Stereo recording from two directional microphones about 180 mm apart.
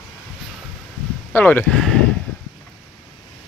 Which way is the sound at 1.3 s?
10° left (ahead or behind).